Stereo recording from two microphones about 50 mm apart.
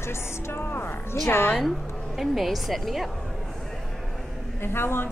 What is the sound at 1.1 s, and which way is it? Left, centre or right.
Speech, left.